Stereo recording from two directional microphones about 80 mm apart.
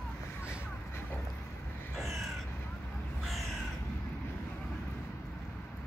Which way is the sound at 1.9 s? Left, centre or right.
Centre.